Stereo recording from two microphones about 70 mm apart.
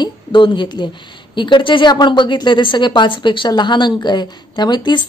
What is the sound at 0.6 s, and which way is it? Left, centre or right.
A woman's voice, left.